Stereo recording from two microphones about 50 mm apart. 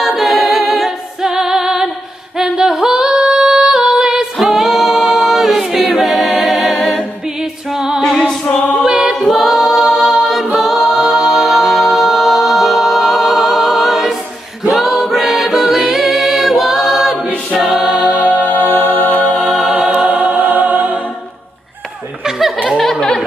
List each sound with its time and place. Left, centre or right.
0.0 s a capella: centre
2.4 s female singing: centre
4.4 s choir: centre
6.0 s a capella: centre
7.3 s music: centre
8.0 s music: centre
8.8 s a capella: centre
9.2 s a capella: centre
14.9 s music: centre
15.9 s a capella: centre
18.0 s music: left
19.9 s music: right
22.8 s chuckle: centre